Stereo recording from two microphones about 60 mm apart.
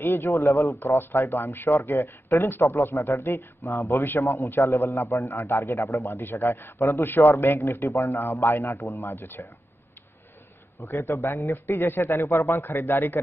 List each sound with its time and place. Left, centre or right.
0.0 s speech: left
0.3 s a man's voice: left
0.8 s a man's voice: left
1.7 s a man's voice: left
4.5 s a man's voice: left
5.3 s a man's voice: left
5.6 s a man's voice: left
7.0 s a man's voice: left
9.0 s speech: left
10.8 s a man's voice: left
11.5 s a man's voice: left
12.1 s a man's voice: left